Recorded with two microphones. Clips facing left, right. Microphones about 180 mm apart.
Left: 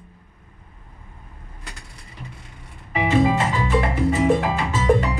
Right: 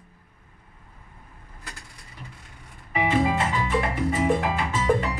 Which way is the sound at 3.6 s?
25° left (ahead or behind).